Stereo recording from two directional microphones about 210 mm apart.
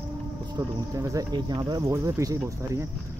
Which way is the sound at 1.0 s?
15° right (ahead or behind).